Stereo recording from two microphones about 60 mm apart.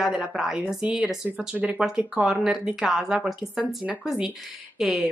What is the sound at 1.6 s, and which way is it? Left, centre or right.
Speech, right.